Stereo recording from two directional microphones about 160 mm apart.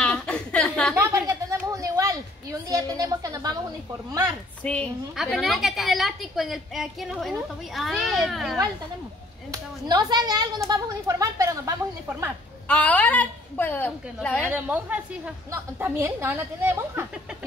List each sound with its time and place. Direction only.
0.0 s a sound: 5° left (ahead or behind)
0.9 s a sound: 20° right (ahead or behind)
4.6 s a woman's voice: 5° left (ahead or behind)
9.5 s speech: 25° right (ahead or behind)
12.6 s a woman's voice: 10° left (ahead or behind)
14.4 s a woman's voice: 10° right (ahead or behind)